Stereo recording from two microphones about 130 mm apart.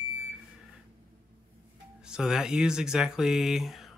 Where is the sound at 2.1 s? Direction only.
5° right (ahead or behind).